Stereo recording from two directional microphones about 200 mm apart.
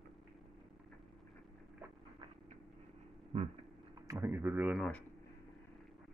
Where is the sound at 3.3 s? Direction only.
30° right (ahead or behind).